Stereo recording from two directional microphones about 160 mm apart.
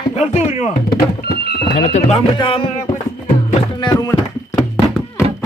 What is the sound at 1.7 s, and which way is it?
Speech, 45° left (ahead or behind).